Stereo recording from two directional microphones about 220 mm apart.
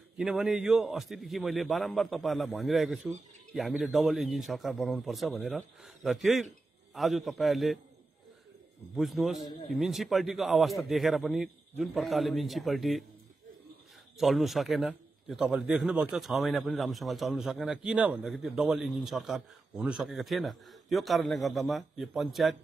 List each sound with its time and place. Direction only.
0.2 s a man's voice: 5° right (ahead or behind)
8.9 s a man's voice: centre (ahead or behind)
9.4 s speech: 20° left (ahead or behind)
9.7 s a man's voice: centre (ahead or behind)
14.1 s a man's voice: centre (ahead or behind)